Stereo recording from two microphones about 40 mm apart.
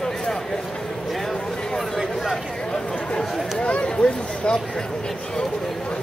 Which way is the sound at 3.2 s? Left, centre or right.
Centre.